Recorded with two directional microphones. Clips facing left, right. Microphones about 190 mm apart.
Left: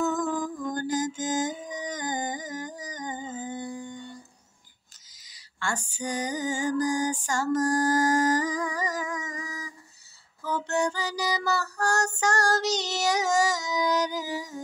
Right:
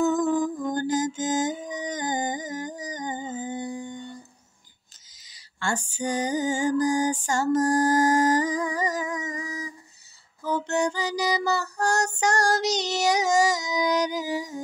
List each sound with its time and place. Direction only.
0.0 s music: 20° right (ahead or behind)
5.3 s music: 25° right (ahead or behind)
10.4 s female singing: 20° right (ahead or behind)